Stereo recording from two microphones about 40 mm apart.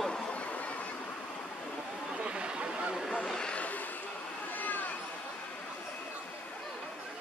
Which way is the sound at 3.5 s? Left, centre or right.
Left.